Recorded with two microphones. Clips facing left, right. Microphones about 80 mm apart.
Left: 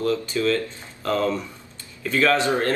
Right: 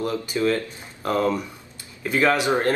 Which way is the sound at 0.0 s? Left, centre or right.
Right.